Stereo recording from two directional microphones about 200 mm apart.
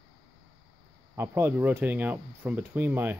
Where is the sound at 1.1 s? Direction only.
10° right (ahead or behind).